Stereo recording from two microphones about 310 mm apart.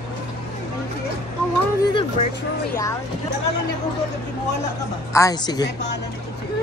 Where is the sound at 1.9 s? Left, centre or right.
Centre.